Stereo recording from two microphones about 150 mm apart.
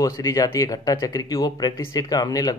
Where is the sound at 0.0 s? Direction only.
20° left (ahead or behind).